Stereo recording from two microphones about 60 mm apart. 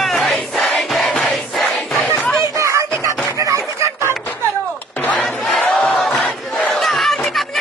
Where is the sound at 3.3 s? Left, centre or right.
Right.